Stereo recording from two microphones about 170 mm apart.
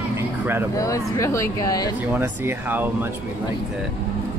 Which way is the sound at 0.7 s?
20° left (ahead or behind).